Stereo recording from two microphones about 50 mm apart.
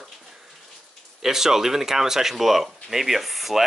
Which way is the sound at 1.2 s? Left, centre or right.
Centre.